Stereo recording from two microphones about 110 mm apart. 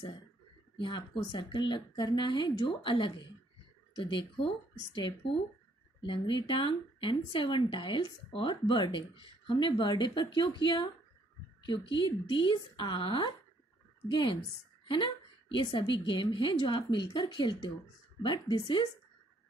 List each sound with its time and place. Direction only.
0.7 s speech: 50° left (ahead or behind)
15.5 s speech: 45° left (ahead or behind)